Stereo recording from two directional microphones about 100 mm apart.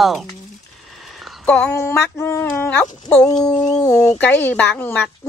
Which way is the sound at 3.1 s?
10° left (ahead or behind).